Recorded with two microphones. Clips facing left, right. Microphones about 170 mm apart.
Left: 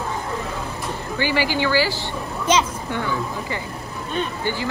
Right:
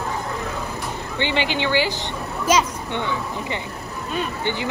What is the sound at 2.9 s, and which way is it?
Speech, 20° right (ahead or behind).